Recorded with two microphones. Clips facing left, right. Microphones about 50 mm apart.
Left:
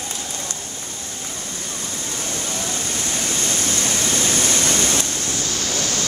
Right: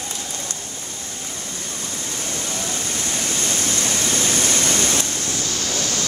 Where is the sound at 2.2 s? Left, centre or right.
Centre.